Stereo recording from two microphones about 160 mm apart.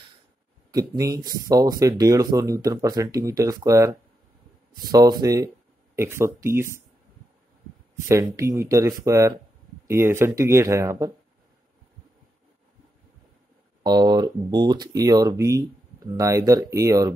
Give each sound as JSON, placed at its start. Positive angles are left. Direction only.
{"t": 0.7, "sound": "speech", "side_deg": -25}
{"t": 8.1, "sound": "speech", "side_deg": -20}
{"t": 13.8, "sound": "speech", "side_deg": -25}